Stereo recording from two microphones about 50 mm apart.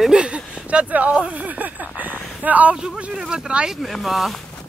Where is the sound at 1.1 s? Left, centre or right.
Right.